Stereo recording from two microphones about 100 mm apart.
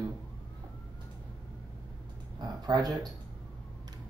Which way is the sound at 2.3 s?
45° right (ahead or behind).